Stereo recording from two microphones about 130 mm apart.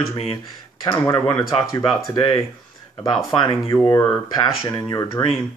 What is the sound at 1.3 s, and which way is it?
Speech, 35° left (ahead or behind).